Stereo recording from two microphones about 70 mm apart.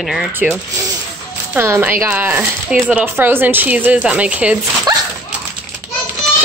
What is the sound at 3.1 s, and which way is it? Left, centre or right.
Speech, right.